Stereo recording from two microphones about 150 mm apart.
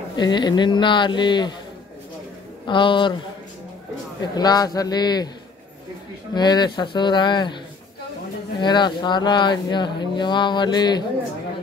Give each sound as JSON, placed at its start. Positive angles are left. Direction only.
{"t": 0.1, "sound": "speech", "side_deg": 30}
{"t": 2.6, "sound": "speech", "side_deg": 30}
{"t": 4.2, "sound": "a man's voice", "side_deg": 25}
{"t": 6.3, "sound": "speech", "side_deg": 30}
{"t": 8.5, "sound": "speech", "side_deg": 30}